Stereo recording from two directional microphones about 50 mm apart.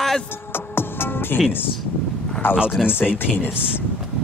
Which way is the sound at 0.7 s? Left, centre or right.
Left.